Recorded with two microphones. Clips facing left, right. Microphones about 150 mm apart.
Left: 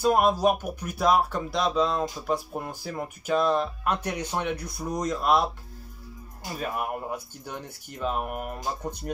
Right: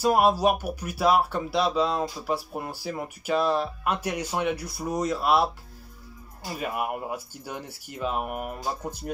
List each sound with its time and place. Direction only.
0.0 s speech: 10° right (ahead or behind)
6.5 s speech: 5° right (ahead or behind)